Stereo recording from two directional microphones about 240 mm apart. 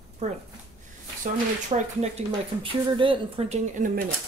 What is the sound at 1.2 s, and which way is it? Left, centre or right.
Speech, right.